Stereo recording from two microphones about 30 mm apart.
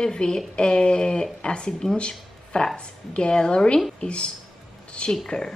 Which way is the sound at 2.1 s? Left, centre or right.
Left.